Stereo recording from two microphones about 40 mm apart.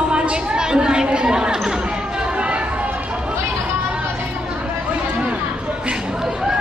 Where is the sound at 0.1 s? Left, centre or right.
Right.